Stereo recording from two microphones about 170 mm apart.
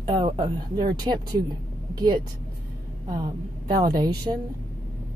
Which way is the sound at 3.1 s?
25° right (ahead or behind).